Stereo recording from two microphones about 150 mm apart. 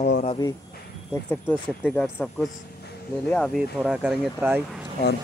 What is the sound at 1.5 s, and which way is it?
Speech, 10° left (ahead or behind).